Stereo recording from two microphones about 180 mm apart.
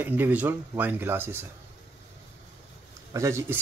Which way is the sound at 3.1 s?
15° right (ahead or behind).